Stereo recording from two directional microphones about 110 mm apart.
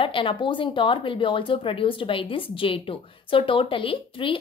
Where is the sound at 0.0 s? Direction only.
50° left (ahead or behind).